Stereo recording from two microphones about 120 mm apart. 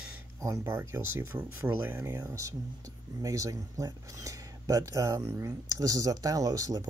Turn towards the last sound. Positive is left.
turn(degrees=-30)  # may be behind; listen again after turning